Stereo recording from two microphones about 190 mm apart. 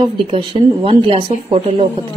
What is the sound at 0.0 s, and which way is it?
Speech, 25° right (ahead or behind).